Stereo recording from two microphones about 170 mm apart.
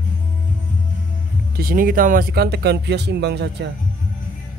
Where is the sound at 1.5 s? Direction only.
55° right (ahead or behind); by 3.7 s 80° right.